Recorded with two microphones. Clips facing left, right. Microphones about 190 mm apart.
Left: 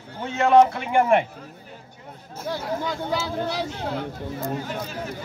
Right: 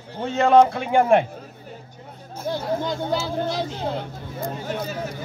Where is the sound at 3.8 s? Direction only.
30° right (ahead or behind).